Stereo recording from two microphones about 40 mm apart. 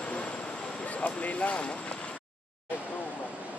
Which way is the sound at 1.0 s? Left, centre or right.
Left.